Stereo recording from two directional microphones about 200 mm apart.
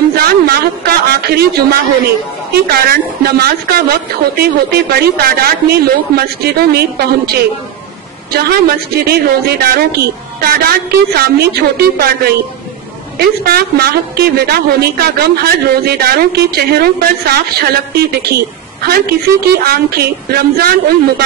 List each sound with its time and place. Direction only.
0.1 s a man's voice: 50° right (ahead or behind)
13.4 s speech: 50° right (ahead or behind)